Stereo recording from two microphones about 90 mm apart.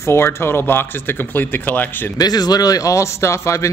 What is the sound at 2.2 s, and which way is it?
Speech, 50° left (ahead or behind).